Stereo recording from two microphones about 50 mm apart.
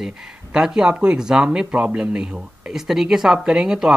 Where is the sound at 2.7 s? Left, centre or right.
Centre.